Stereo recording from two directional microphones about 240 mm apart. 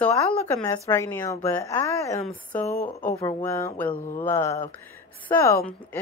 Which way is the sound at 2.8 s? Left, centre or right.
Left.